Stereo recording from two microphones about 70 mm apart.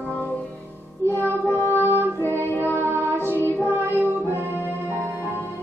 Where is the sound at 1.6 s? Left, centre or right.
Left.